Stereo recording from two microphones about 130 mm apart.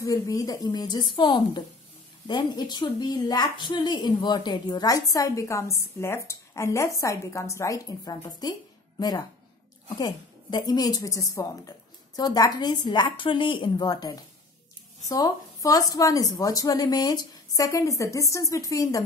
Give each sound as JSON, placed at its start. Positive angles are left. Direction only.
{"t": 0.0, "sound": "a woman's voice", "side_deg": 25}
{"t": 9.8, "sound": "a woman's voice", "side_deg": 35}